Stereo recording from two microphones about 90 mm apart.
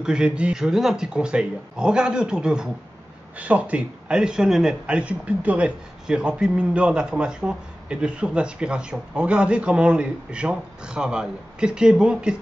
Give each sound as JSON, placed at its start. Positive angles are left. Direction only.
{"t": 0.0, "sound": "speech", "side_deg": -10}